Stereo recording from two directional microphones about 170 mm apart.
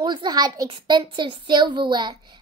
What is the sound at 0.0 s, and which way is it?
Speech, 25° right (ahead or behind).